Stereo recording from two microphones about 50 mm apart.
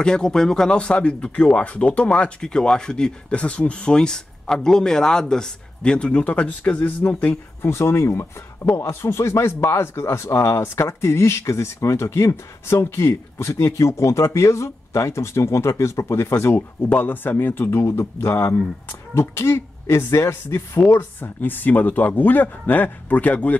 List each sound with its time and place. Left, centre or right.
0.0 s speech: centre
0.7 s speech: left
7.6 s speech: left
10.6 s speech: left
16.8 s speech: left
17.7 s speech: left
20.9 s speech: left